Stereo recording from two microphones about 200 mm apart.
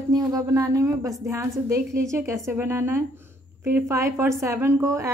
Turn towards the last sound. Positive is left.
turn(degrees=-15)  # may be behind; listen again after turning